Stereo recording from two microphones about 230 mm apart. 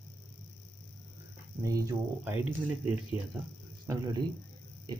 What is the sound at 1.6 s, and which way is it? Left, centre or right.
Speech, centre.